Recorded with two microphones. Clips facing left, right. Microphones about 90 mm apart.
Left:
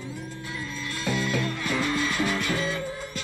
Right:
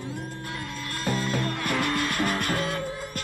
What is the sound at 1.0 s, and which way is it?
Music, 45° right (ahead or behind).